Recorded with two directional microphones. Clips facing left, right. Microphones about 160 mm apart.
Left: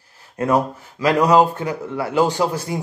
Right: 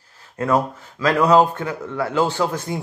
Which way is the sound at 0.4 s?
15° left (ahead or behind).